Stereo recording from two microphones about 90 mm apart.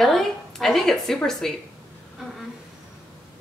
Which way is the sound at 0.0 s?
Centre (ahead or behind).